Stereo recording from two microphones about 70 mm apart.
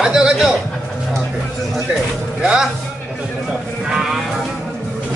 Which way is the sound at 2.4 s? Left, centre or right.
Centre.